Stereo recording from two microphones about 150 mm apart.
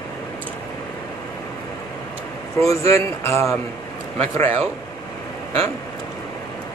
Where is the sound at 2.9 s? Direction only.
20° left (ahead or behind).